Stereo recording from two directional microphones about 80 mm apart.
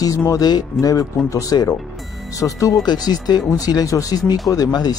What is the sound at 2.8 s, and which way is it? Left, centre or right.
Speech, left.